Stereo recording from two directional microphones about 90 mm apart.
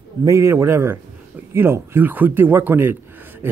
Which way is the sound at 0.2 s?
35° right (ahead or behind).